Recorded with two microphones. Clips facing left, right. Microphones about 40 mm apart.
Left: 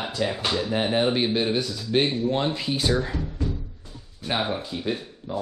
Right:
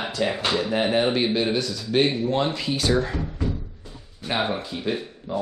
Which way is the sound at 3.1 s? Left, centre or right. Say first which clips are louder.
Right 2 dB; right.